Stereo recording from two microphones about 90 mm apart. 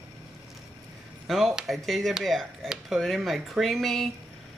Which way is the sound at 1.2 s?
Centre (ahead or behind).